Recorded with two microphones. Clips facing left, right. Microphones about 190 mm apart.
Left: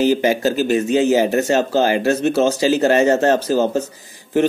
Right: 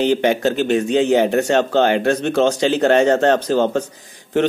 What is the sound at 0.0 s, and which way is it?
Speech, 5° left (ahead or behind).